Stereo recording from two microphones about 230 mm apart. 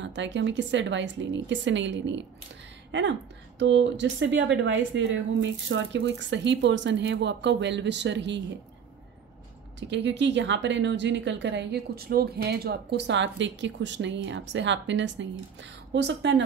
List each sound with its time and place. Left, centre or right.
0.0 s speech: right
9.8 s speech: right